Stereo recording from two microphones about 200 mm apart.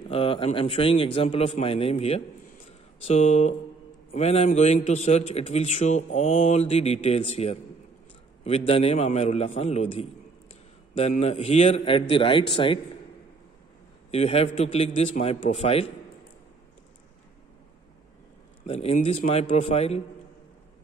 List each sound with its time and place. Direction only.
0.1 s a man's voice: 25° left (ahead or behind)
14.1 s a man's voice: 30° left (ahead or behind)
18.7 s a man's voice: 30° left (ahead or behind)